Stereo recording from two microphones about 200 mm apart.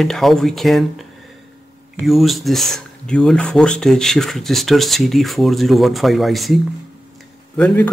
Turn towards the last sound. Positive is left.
turn(degrees=5)  # may be behind; listen again after turning